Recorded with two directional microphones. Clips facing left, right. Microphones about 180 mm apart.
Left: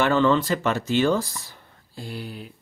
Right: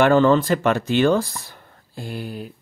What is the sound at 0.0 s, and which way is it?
Speech, 45° right (ahead or behind).